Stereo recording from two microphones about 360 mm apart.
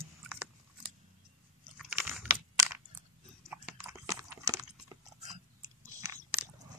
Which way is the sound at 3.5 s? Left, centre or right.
Centre.